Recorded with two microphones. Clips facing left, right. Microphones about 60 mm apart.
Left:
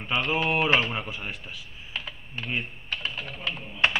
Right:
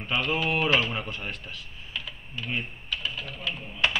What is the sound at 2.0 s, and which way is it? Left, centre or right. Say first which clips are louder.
Typing: left 1 dB; left.